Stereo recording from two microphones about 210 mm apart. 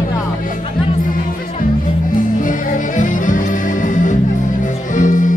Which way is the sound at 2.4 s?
40° left (ahead or behind).